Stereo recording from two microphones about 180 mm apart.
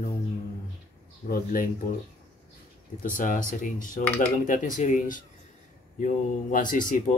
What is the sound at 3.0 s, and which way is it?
Speech, 50° left (ahead or behind).